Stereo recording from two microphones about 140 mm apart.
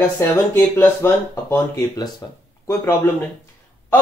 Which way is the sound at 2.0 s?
30° left (ahead or behind).